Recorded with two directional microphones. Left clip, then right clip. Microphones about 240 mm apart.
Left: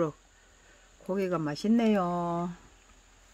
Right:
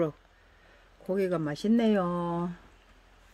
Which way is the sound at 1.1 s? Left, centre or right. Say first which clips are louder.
Right 1 dB; centre.